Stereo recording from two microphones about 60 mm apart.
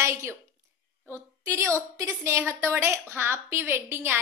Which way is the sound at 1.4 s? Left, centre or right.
Right.